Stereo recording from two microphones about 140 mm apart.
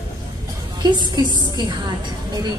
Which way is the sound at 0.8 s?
30° right (ahead or behind).